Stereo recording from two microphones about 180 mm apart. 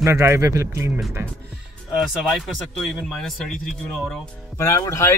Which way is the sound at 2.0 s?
Centre (ahead or behind).